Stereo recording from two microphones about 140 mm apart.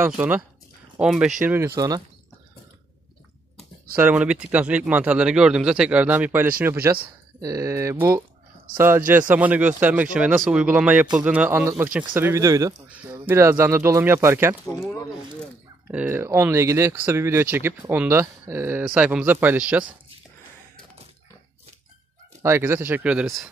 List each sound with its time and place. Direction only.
0.0 s speech: 10° right (ahead or behind)
1.8 s speech: 25° right (ahead or behind)
3.9 s speech: 10° right (ahead or behind)
12.8 s speech: 10° right (ahead or behind)
15.9 s speech: 10° right (ahead or behind)
22.4 s speech: 15° right (ahead or behind); by 23.5 s centre (ahead or behind)